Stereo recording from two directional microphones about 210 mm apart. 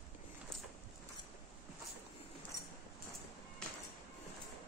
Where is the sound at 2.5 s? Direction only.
15° left (ahead or behind).